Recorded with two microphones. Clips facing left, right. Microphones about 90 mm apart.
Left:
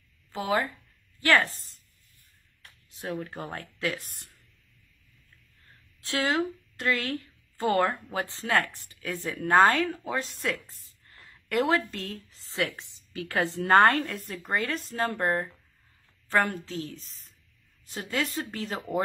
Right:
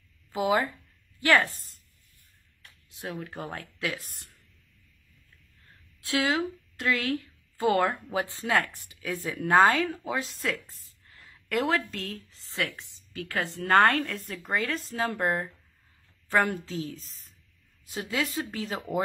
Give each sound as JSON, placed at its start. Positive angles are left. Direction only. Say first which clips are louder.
{"t": 0.3, "sound": "speech", "louder": "right 2 dB", "side_deg": -15}
{"t": 1.5, "sound": "speech", "louder": "left 1 dB", "side_deg": 0}
{"t": 2.9, "sound": "speech", "louder": "left 3 dB", "side_deg": 0}
{"t": 5.9, "sound": "speech", "louder": "even", "side_deg": 0}
{"t": 12.3, "sound": "a woman's voice", "louder": "left 4 dB", "side_deg": 15}